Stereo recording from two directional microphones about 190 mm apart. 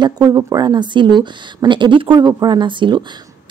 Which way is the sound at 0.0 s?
20° right (ahead or behind).